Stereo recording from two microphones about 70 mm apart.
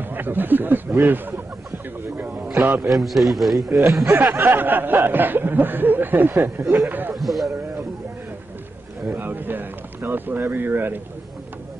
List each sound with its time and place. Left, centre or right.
0.0 s speech: right
2.6 s snicker: right
2.9 s a man's voice: centre
4.1 s snicker: right
6.9 s a man's voice: right
7.2 s speech: centre
9.0 s snicker: right